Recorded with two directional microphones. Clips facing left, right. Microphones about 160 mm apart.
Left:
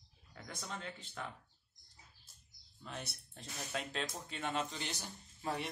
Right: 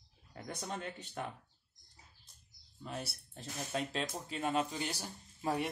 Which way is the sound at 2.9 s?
5° right (ahead or behind).